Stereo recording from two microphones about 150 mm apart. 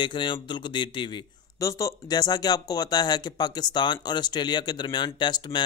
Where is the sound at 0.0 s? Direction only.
30° left (ahead or behind).